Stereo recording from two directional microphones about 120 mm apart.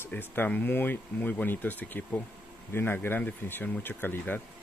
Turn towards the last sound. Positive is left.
turn(degrees=15)  # may be behind; listen again after turning